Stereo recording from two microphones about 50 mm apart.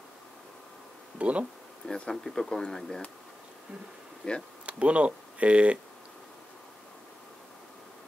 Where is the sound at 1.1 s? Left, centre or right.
Right.